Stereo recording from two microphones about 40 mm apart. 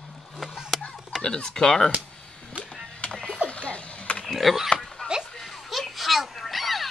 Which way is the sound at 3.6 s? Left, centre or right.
Left.